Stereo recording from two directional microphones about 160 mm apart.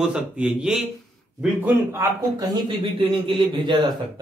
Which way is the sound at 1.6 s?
15° right (ahead or behind).